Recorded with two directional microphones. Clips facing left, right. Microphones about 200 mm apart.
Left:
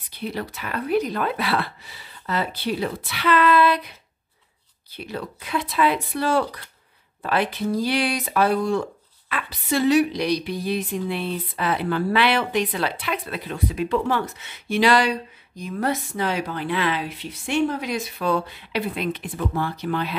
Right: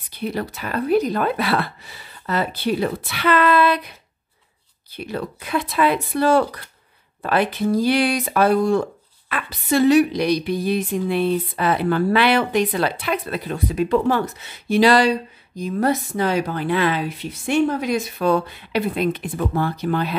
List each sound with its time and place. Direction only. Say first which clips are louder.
0.2 s a woman's voice: right 4 dB; 45° right (ahead or behind)
4.9 s a woman's voice: right 4 dB; 50° right (ahead or behind)